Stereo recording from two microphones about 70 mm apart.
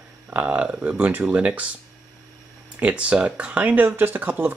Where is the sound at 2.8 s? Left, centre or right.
Centre.